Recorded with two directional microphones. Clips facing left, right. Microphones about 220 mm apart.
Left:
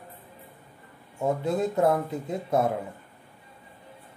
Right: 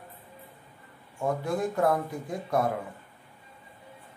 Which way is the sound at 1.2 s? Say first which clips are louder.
Left 3 dB; 20° left (ahead or behind).